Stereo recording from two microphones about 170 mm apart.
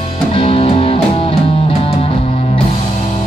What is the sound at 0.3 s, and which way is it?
Music, 35° left (ahead or behind).